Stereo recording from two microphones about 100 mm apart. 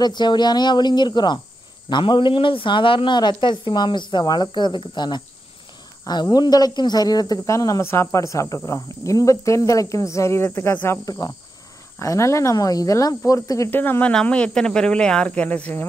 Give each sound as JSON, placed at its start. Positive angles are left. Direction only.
{"t": 0.0, "sound": "speech", "side_deg": 45}
{"t": 6.3, "sound": "speech", "side_deg": 40}
{"t": 11.1, "sound": "speech", "side_deg": 40}
{"t": 13.7, "sound": "speech", "side_deg": 20}